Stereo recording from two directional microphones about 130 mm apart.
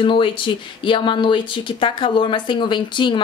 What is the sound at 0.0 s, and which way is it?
Speech, 40° left (ahead or behind).